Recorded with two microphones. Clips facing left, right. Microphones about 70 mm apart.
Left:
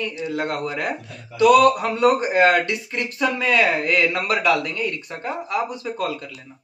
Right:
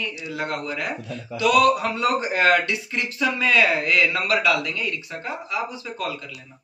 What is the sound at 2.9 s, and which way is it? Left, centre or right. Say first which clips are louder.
Speech: left 2 dB; left.